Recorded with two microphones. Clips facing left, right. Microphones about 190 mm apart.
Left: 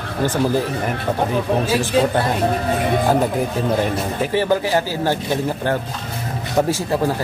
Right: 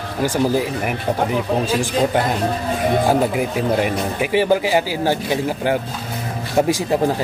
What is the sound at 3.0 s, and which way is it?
Speech, 10° right (ahead or behind).